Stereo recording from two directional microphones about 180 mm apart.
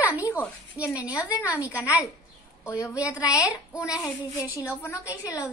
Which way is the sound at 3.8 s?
5° right (ahead or behind).